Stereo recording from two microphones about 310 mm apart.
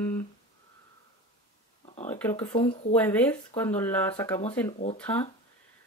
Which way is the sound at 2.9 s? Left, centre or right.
Centre.